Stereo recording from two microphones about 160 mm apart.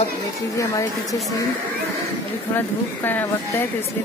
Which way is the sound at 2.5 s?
15° left (ahead or behind).